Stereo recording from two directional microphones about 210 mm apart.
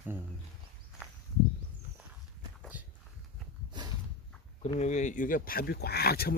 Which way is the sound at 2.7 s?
5° right (ahead or behind).